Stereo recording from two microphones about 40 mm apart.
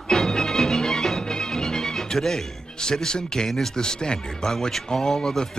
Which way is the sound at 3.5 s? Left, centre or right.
Centre.